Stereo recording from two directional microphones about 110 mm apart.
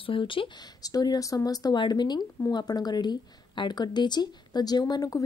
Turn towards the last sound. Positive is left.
turn(degrees=35)  # may be behind; listen again after turning